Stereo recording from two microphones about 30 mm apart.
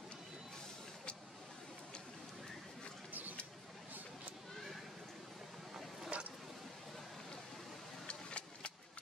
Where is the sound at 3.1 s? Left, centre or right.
Right.